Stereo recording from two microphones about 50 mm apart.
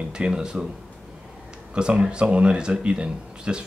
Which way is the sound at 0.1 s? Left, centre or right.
Centre.